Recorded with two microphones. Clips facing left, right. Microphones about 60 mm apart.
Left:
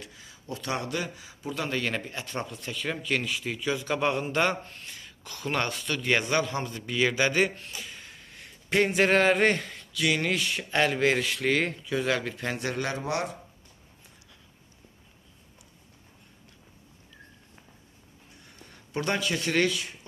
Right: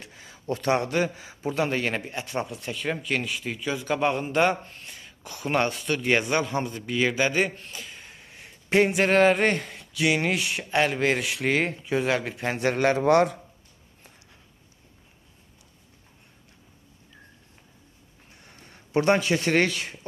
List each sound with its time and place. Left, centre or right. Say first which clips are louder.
0.1 s a man's voice: right 8 dB; right
2.0 s speech: right 4 dB; centre
5.2 s a man's voice: right 5 dB; centre
8.1 s a sound: right 1 dB; centre
8.9 s a man's voice: even; centre
9.9 s a man's voice: right 3 dB; right
18.4 s a sound: right 2 dB; right
19.7 s speech: right 1 dB; right